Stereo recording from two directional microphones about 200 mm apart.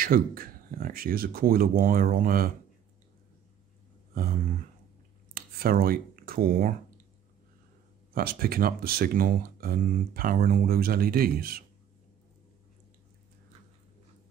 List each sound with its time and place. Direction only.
0.0 s speech: 45° right (ahead or behind)
4.1 s a sound: 45° right (ahead or behind)
8.1 s speech: 50° right (ahead or behind)